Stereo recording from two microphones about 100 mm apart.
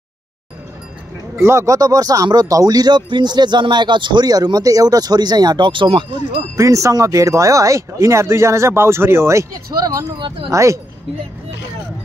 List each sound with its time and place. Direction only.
1.3 s speech: 25° right (ahead or behind); by 6.4 s 65° right (ahead or behind)
6.5 s speech: 35° right (ahead or behind)
10.1 s speech: 55° right (ahead or behind)
10.5 s speech: 30° right (ahead or behind)